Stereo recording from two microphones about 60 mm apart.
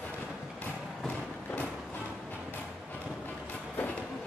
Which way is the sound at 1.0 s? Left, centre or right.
Left.